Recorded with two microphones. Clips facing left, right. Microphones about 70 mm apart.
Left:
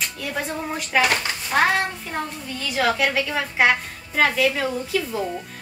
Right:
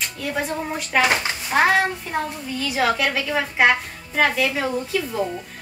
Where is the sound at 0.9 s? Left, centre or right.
Centre.